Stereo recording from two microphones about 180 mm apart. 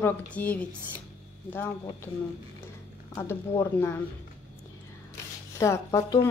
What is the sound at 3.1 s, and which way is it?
Speech, 15° left (ahead or behind).